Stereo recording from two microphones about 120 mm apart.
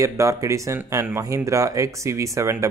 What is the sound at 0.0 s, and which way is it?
Speech, 25° right (ahead or behind).